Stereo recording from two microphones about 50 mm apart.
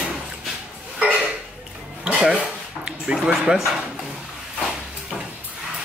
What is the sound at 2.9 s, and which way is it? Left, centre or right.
Speech, centre.